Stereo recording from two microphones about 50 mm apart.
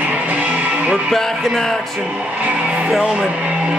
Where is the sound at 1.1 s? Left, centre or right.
Centre.